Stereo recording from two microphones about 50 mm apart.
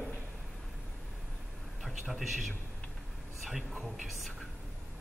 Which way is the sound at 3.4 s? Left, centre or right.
Centre.